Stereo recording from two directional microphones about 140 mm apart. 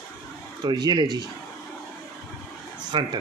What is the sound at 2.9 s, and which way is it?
Speech, 35° right (ahead or behind).